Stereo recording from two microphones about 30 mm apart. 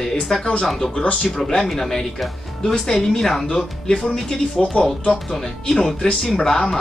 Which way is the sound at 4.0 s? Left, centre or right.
Centre.